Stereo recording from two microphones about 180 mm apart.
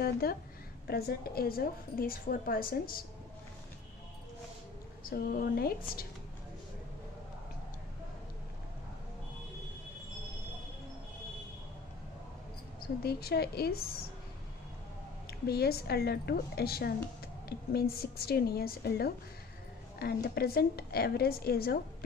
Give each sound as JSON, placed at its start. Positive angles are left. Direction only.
{"t": 0.0, "sound": "a woman's voice", "side_deg": 60}
{"t": 5.0, "sound": "a woman's voice", "side_deg": 55}
{"t": 13.0, "sound": "a woman's voice", "side_deg": 60}
{"t": 15.4, "sound": "a woman's voice", "side_deg": 60}